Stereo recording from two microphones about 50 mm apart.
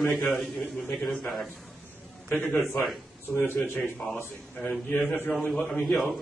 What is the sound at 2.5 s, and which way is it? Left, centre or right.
Speech, centre.